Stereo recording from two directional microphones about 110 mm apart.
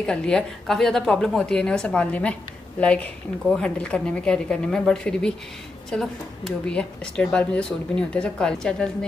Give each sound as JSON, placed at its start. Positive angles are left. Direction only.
{"t": 0.0, "sound": "speech", "side_deg": 10}